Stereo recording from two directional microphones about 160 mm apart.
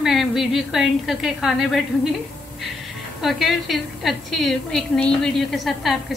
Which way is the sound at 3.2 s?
Centre (ahead or behind).